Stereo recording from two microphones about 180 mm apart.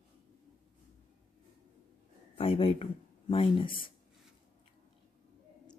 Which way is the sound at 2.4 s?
30° left (ahead or behind).